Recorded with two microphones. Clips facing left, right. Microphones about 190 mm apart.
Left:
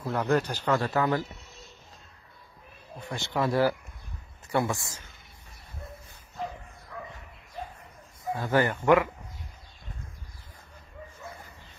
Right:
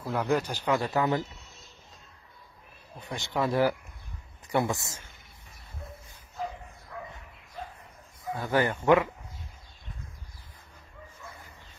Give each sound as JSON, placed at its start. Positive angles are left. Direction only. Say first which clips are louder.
{"t": 0.0, "sound": "a man's voice", "louder": "left 1 dB", "side_deg": -5}
{"t": 3.1, "sound": "a man's voice", "louder": "left 1 dB", "side_deg": -15}
{"t": 8.4, "sound": "speech", "louder": "left 1 dB", "side_deg": -15}